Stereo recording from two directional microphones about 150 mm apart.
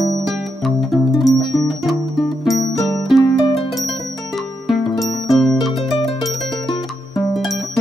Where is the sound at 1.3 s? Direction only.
25° left (ahead or behind).